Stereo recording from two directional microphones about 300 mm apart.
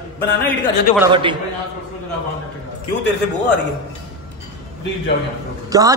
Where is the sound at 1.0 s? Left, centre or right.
Centre.